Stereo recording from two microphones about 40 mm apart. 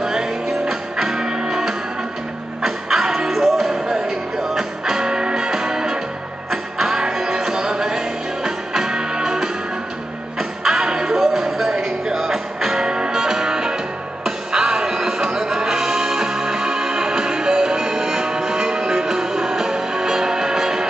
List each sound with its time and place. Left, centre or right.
0.0 s music: centre
3.8 s music: centre
10.6 s music: centre
11.1 s music: centre
12.8 s music: right